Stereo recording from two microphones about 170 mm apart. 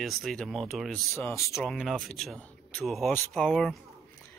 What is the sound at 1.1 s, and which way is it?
Speech, 15° left (ahead or behind).